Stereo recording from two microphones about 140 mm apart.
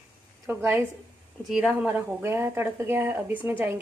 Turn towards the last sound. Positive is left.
turn(degrees=-15)  # may be behind; listen again after turning